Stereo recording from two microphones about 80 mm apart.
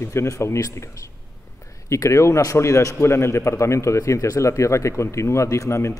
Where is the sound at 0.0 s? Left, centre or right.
Left.